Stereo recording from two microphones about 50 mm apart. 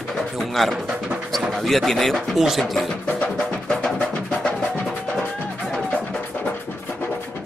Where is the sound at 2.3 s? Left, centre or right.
Centre.